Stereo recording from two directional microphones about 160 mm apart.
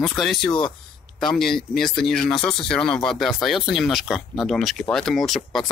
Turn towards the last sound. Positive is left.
turn(degrees=0)  # may be behind; listen again after turning